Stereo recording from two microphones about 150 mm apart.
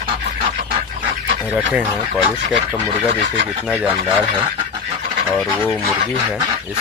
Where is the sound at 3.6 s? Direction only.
5° right (ahead or behind).